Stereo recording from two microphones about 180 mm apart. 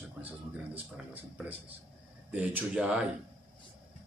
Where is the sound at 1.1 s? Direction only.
10° right (ahead or behind).